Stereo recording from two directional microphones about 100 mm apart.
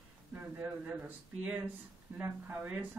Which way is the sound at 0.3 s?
15° right (ahead or behind).